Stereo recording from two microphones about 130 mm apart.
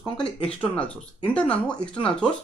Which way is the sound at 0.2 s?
10° left (ahead or behind).